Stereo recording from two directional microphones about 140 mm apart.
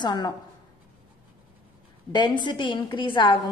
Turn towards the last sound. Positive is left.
turn(degrees=35)  # may be behind; listen again after turning